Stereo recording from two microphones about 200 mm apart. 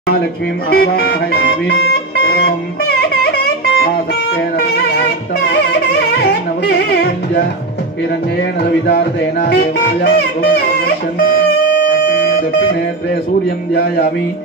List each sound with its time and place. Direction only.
0.7 s music: 50° left (ahead or behind)
4.6 s music: 55° left (ahead or behind)
8.8 s music: 55° left (ahead or behind)